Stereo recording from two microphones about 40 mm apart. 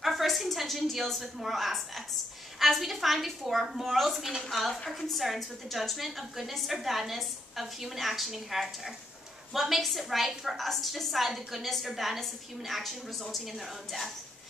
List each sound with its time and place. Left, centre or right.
0.0 s a woman's voice: centre